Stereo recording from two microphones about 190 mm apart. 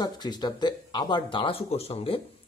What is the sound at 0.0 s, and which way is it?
Speech, 20° left (ahead or behind).